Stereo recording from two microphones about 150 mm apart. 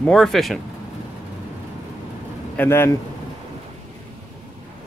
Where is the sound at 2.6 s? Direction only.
15° left (ahead or behind).